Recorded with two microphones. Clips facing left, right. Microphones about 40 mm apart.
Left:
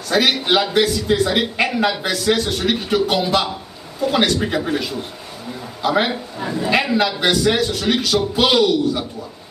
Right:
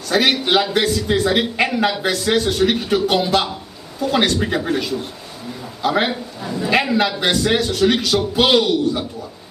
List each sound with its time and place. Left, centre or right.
0.1 s a man's voice: centre